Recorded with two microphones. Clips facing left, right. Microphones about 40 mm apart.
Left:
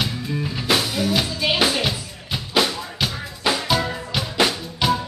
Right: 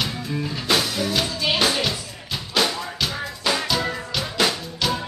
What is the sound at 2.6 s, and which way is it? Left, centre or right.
Drum, centre.